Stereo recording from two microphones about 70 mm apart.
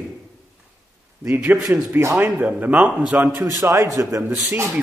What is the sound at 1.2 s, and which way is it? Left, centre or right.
Speech, right.